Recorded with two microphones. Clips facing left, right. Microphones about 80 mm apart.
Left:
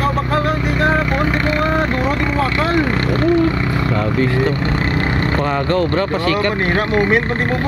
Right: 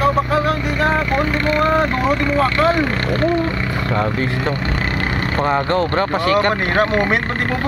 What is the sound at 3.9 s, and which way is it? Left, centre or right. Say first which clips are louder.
Speech: left 1 dB; right.